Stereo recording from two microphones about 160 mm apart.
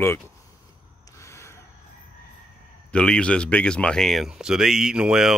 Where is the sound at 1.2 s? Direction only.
20° left (ahead or behind).